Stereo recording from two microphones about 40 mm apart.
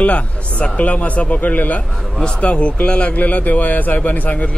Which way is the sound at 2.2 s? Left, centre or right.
Left.